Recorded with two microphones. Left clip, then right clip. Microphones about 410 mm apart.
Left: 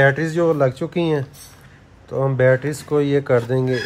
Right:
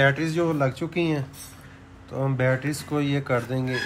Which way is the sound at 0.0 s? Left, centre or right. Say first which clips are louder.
Left 6 dB; left.